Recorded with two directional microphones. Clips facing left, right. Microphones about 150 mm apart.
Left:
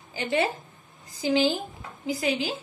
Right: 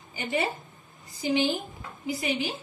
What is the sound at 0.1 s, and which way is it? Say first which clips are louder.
A woman's voice: left 3 dB; 90° left.